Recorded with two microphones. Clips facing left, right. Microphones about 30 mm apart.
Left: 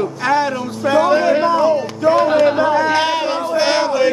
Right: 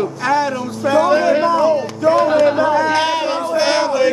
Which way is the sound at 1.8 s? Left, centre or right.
Centre.